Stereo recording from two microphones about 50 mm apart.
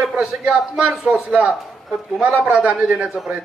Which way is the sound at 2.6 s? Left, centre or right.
Right.